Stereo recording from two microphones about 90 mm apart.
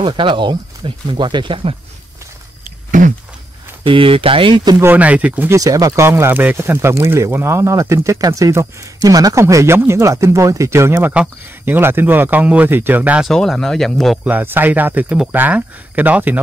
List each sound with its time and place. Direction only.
0.0 s speech: 65° right (ahead or behind); by 1.8 s 80° right
3.8 s speech: 80° right
4.8 s speech: 15° right (ahead or behind)
5.5 s speech: 40° right (ahead or behind)
6.0 s speech: 25° right (ahead or behind)
11.1 s speech: 20° right (ahead or behind)
13.3 s speech: 5° left (ahead or behind)
14.2 s speech: 20° right (ahead or behind)